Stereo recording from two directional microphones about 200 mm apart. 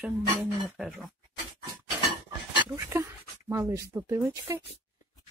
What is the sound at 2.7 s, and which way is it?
Speech, 15° right (ahead or behind).